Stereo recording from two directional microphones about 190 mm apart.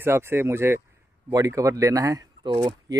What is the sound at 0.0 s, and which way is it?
Speech, 10° right (ahead or behind).